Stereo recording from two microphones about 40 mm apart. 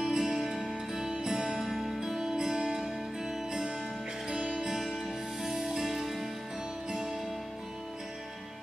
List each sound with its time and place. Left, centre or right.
0.0 s music: centre
1.6 s music: centre
4.3 s music: right
4.6 s music: centre